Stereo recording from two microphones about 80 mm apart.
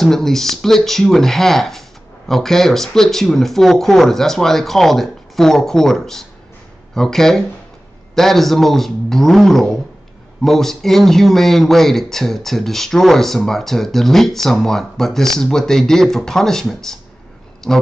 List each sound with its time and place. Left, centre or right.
0.0 s speech: centre